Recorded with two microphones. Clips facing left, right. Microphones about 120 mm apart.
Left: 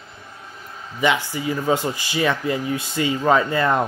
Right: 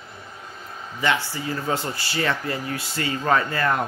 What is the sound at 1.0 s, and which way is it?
Speech, 15° left (ahead or behind).